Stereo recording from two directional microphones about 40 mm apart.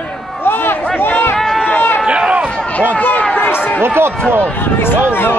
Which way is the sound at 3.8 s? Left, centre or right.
Right.